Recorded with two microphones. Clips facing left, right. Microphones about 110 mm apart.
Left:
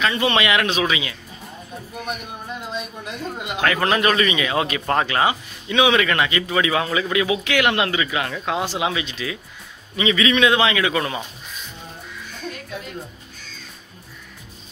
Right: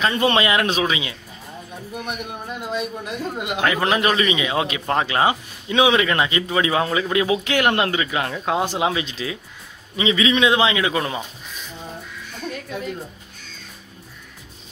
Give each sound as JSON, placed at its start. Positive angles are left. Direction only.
{"t": 0.4, "sound": "speech", "side_deg": -35}
{"t": 2.0, "sound": "a man's voice", "side_deg": -10}